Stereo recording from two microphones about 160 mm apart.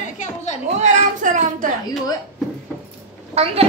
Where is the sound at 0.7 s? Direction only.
45° right (ahead or behind).